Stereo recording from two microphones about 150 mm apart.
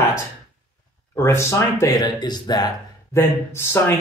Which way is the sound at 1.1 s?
20° left (ahead or behind).